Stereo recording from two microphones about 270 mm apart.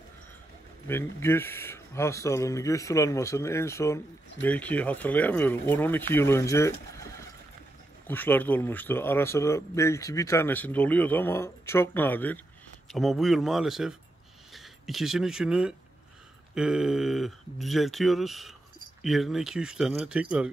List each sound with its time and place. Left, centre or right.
0.8 s speech: centre
8.1 s speech: centre